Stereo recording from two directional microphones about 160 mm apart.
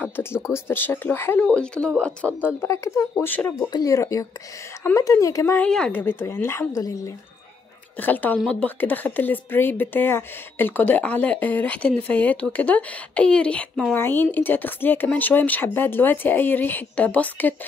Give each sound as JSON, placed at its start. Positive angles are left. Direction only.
{"t": 0.0, "sound": "a sound", "side_deg": 15}
{"t": 0.7, "sound": "a woman's voice", "side_deg": 15}
{"t": 3.5, "sound": "a woman's voice", "side_deg": 25}
{"t": 8.0, "sound": "a woman's voice", "side_deg": 10}